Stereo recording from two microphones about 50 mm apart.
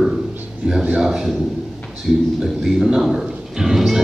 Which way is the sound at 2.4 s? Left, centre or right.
Centre.